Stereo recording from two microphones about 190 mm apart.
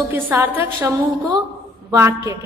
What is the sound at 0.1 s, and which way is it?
A woman's voice, 10° right (ahead or behind).